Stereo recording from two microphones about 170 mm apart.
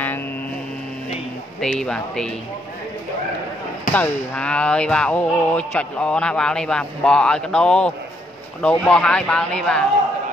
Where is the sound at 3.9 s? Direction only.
10° left (ahead or behind).